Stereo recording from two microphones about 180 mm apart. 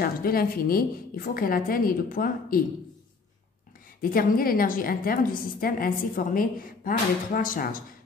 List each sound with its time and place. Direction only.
0.0 s a woman's voice: 55° left (ahead or behind)
4.0 s a woman's voice: 50° left (ahead or behind)